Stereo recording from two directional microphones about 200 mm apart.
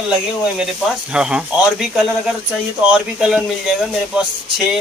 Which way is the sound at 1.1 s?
5° right (ahead or behind).